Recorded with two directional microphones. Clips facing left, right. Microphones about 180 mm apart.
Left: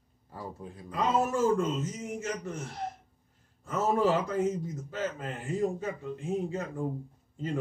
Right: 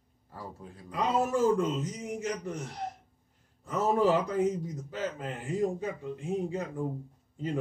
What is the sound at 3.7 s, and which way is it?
A man's voice, 15° right (ahead or behind).